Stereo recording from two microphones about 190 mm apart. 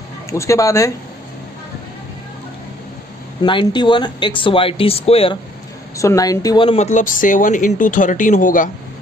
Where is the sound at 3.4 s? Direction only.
25° left (ahead or behind).